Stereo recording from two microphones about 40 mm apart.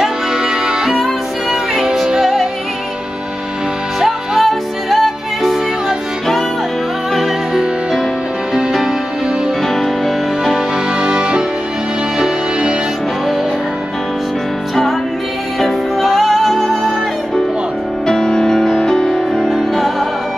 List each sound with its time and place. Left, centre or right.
2.0 s music: centre
4.0 s music: centre
9.6 s music: centre
10.5 s music: right
16.0 s music: centre
18.0 s music: centre
19.7 s music: centre